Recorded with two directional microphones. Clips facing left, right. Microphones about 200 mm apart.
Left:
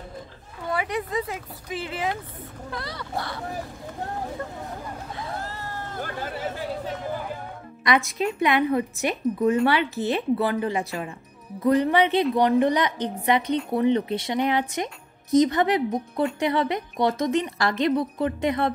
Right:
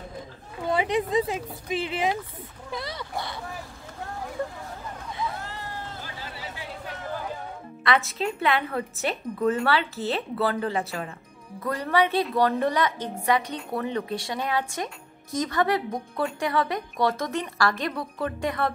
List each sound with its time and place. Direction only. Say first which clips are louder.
0.7 s speech: right 3 dB; 20° right (ahead or behind)
5.4 s vehicle: left 2 dB; 40° left (ahead or behind)
7.8 s a woman's voice: left 2 dB; 15° left (ahead or behind)